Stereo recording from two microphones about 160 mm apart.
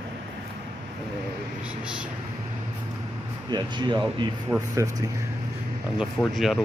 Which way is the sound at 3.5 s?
25° right (ahead or behind).